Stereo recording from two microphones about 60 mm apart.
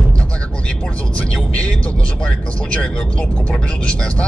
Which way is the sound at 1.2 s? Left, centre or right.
Centre.